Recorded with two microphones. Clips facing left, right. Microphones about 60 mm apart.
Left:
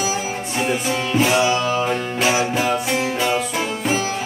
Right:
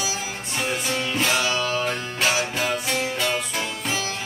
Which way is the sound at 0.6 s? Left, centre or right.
Centre.